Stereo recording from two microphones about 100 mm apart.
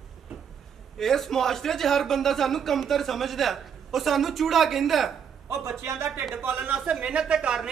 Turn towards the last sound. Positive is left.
turn(degrees=-5)  # may be behind; listen again after turning